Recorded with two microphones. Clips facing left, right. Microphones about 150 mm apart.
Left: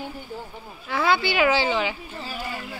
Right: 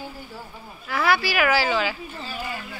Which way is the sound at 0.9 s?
20° left (ahead or behind).